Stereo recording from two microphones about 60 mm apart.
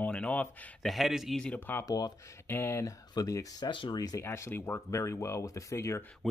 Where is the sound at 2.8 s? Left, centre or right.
Left.